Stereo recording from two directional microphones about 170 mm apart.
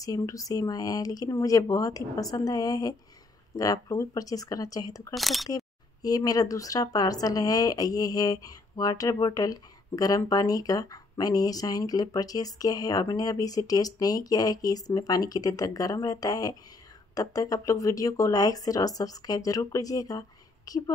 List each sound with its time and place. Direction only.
0.0 s speech: 20° left (ahead or behind)
5.1 s speech: centre (ahead or behind)
6.0 s speech: 20° left (ahead or behind)